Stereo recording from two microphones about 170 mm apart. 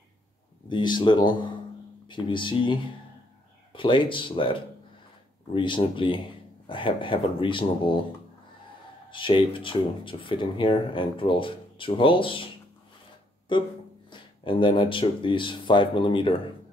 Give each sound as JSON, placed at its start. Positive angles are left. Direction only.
{"t": 0.7, "sound": "speech", "side_deg": 25}
{"t": 9.1, "sound": "speech", "side_deg": 30}
{"t": 13.5, "sound": "speech", "side_deg": 25}